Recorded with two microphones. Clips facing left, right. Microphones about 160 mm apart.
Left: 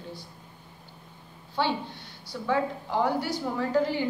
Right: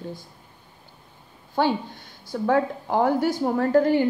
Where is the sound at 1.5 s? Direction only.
45° right (ahead or behind).